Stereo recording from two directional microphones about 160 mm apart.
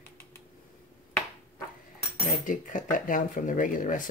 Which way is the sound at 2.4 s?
55° left (ahead or behind).